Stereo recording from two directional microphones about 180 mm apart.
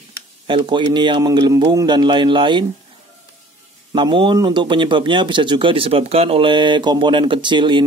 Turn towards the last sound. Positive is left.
turn(degrees=-25)  # may be behind; listen again after turning